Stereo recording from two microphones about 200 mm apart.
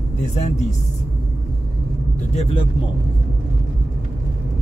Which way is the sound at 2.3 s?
30° left (ahead or behind).